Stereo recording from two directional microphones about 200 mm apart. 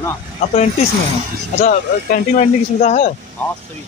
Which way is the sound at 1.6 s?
40° left (ahead or behind).